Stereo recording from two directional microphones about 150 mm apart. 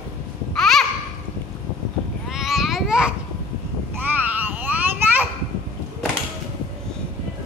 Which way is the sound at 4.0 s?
10° right (ahead or behind).